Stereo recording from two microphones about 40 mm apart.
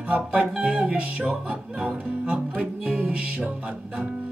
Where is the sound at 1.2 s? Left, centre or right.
Right.